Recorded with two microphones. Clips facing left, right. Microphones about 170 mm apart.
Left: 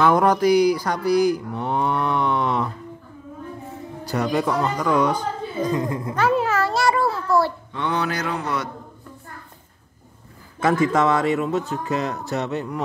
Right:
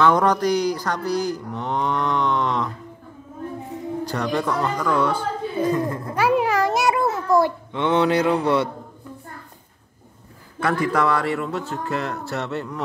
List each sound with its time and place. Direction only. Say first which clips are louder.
0.0 s cattle: left 1 dB; 10° left (ahead or behind)
4.1 s a man's voice: left 3 dB; 10° left (ahead or behind)
6.1 s a sound: right 1 dB; 10° right (ahead or behind)
8.4 s a man's voice: right 7 dB; 30° right (ahead or behind)
10.6 s a man's voice: left 2 dB; 20° left (ahead or behind)